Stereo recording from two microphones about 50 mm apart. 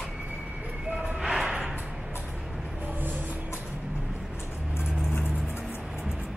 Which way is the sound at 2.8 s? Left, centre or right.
Right.